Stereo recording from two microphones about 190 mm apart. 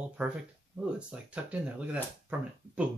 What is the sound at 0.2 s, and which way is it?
Speech, 10° right (ahead or behind).